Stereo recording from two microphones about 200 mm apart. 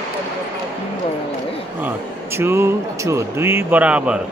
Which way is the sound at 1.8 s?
10° right (ahead or behind).